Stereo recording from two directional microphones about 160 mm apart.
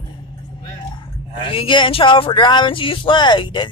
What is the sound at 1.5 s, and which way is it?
Speech, 30° left (ahead or behind).